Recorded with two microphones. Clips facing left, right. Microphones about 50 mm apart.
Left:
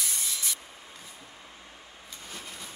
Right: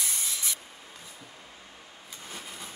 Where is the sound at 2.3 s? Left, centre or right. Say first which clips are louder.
Right 1 dB; centre.